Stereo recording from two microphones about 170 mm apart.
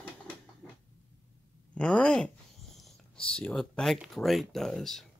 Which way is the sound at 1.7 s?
5° left (ahead or behind).